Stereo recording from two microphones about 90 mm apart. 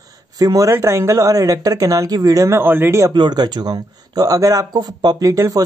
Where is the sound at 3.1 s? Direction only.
55° right (ahead or behind).